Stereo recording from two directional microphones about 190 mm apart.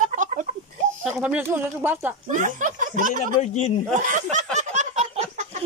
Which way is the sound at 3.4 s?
35° left (ahead or behind).